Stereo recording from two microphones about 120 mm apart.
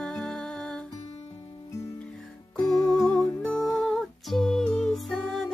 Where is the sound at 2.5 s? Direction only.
30° left (ahead or behind).